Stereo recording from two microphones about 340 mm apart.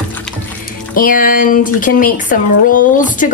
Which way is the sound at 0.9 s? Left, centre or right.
Left.